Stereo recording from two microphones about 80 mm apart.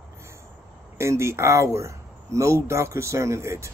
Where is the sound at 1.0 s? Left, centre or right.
Right.